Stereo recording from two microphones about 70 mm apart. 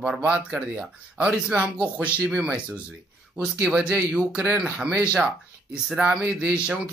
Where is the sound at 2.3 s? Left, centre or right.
Centre.